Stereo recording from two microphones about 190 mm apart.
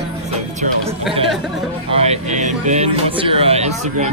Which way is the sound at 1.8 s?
35° right (ahead or behind).